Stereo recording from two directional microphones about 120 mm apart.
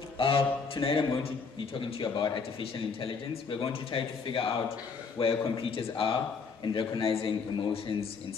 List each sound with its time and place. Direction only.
0.2 s a man's voice: 50° left (ahead or behind)